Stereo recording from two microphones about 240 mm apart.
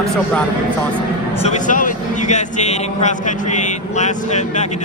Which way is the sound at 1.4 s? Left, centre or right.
Left.